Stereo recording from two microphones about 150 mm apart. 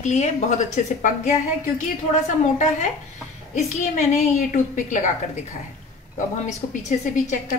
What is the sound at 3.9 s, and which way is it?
A woman's voice, 50° left (ahead or behind).